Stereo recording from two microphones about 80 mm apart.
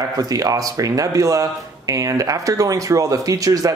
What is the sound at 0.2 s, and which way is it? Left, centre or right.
Speech, right.